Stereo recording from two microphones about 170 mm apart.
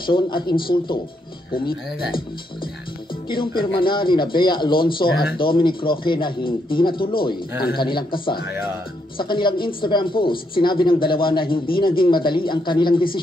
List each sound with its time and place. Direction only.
0.0 s speech: 30° left (ahead or behind)
3.3 s speech: 30° left (ahead or behind)
7.5 s speech: 70° left (ahead or behind)
7.8 s speech: 30° left (ahead or behind)